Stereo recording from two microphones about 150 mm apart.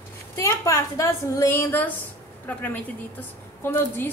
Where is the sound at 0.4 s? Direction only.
20° left (ahead or behind).